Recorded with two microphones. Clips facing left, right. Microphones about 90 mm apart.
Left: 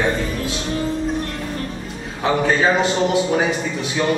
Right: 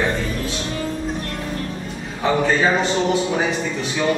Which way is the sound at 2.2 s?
5° left (ahead or behind).